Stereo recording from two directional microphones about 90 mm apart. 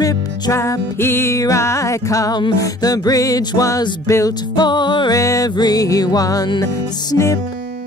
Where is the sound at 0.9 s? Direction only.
25° left (ahead or behind).